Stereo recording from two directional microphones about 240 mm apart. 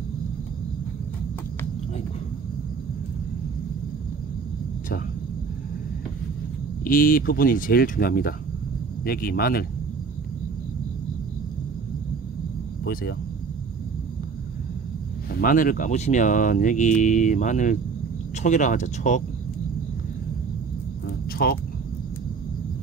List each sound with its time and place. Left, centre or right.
6.8 s speech: left
12.8 s speech: left
15.4 s speech: left
21.3 s speech: left